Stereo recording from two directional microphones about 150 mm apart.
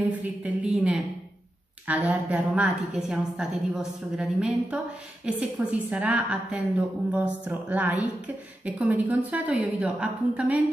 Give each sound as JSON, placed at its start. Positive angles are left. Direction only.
{"t": 0.2, "sound": "a woman's voice", "side_deg": -10}